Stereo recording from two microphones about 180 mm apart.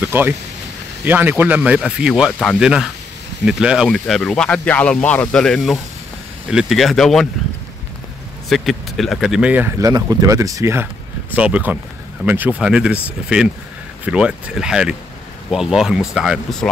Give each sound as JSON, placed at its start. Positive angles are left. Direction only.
{"t": 0.0, "sound": "speech", "side_deg": -10}
{"t": 8.5, "sound": "speech", "side_deg": 0}
{"t": 9.8, "sound": "speech", "side_deg": -20}